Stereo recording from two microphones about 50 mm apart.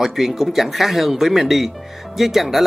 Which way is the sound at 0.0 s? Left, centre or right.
Centre.